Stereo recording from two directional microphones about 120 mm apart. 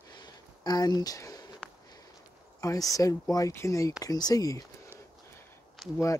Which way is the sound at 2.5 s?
25° left (ahead or behind).